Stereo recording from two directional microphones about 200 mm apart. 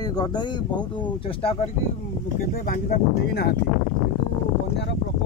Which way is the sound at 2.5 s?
45° left (ahead or behind).